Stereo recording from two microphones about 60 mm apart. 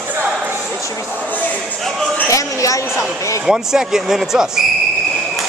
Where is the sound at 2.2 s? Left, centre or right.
Left.